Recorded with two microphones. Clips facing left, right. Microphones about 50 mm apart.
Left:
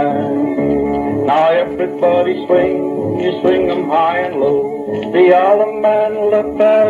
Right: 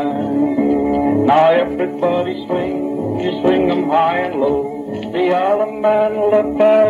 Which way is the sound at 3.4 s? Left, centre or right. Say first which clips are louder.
Even; centre.